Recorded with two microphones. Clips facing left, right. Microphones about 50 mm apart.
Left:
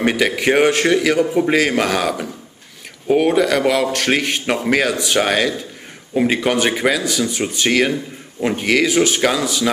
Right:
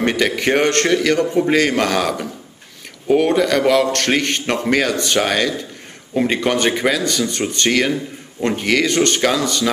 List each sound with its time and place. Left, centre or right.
0.0 s a man's voice: centre